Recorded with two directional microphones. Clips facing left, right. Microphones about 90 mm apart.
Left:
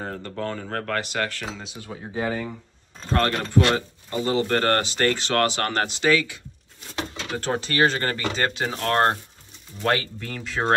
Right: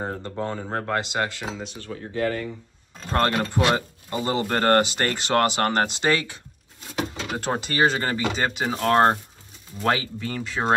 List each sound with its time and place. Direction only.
0.0 s speech: 20° right (ahead or behind)
1.7 s speech: 10° left (ahead or behind)
3.3 s speech: 15° right (ahead or behind)
4.1 s speech: 35° right (ahead or behind)
4.5 s speech: 20° right (ahead or behind)
7.2 s speech: 10° right (ahead or behind)